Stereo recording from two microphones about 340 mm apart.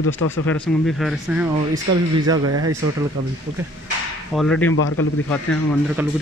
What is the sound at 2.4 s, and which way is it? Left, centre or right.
Speech, right.